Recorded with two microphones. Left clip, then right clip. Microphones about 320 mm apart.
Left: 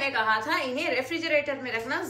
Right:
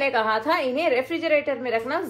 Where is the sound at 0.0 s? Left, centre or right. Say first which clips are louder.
Right 3 dB; centre.